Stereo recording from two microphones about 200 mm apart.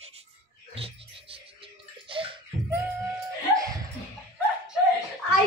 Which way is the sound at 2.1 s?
25° right (ahead or behind).